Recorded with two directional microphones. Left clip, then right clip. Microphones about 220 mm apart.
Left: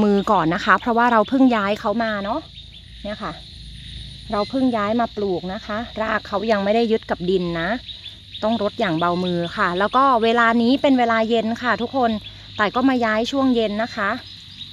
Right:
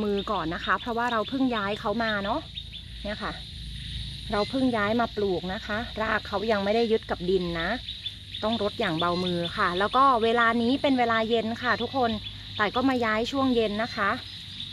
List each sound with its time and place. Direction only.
0.0 s speech: 45° left (ahead or behind)